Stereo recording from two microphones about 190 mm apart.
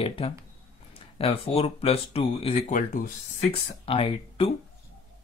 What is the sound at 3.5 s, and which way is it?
Speech, 30° left (ahead or behind).